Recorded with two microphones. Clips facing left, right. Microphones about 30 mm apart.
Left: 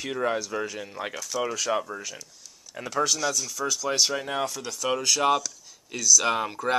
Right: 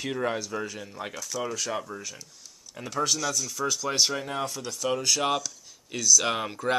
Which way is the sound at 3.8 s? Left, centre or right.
Centre.